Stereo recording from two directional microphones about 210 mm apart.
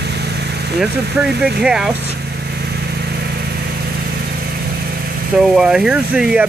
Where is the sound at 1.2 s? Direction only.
5° right (ahead or behind).